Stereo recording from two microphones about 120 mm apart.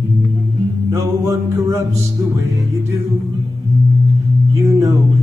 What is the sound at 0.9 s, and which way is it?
Music, 25° right (ahead or behind).